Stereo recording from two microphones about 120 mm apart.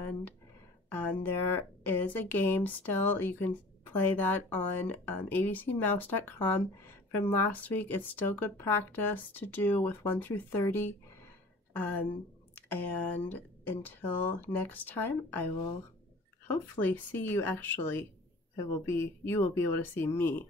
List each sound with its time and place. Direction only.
0.9 s speech: 15° left (ahead or behind)
12.5 s speech: 15° left (ahead or behind)
16.4 s speech: 15° left (ahead or behind)